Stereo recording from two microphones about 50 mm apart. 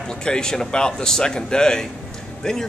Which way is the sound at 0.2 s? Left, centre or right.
Centre.